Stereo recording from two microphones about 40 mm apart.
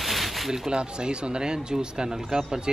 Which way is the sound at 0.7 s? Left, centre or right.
Right.